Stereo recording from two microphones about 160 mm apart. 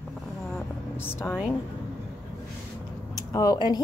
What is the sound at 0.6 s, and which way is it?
Vehicle, 15° left (ahead or behind).